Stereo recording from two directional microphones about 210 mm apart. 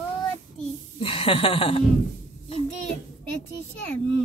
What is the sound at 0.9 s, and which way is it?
Speech, 25° left (ahead or behind).